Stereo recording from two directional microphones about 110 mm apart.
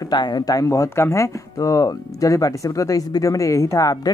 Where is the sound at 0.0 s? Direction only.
40° left (ahead or behind).